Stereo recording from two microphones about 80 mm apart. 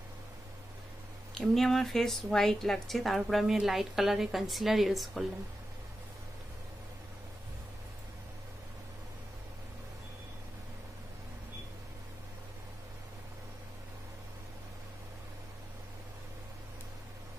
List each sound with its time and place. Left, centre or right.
1.3 s speech: centre